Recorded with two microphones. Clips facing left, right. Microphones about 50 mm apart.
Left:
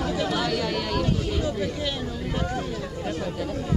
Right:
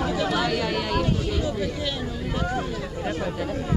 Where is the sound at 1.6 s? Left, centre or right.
Centre.